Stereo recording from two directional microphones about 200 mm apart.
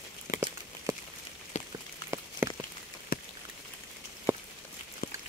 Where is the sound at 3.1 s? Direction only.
50° left (ahead or behind).